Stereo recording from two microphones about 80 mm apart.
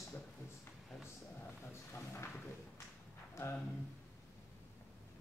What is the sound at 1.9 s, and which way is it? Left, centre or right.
Speech, left.